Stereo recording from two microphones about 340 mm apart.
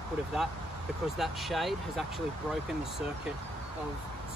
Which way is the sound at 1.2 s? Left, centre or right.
Centre.